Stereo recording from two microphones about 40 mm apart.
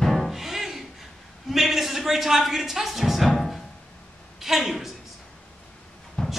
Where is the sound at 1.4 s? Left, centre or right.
Centre.